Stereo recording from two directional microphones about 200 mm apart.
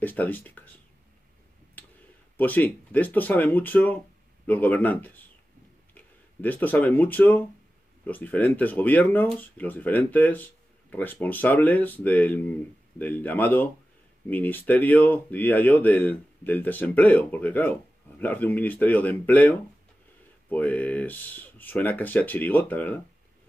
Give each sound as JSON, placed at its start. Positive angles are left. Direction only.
{"t": 0.0, "sound": "speech", "side_deg": 10}
{"t": 2.3, "sound": "speech", "side_deg": 10}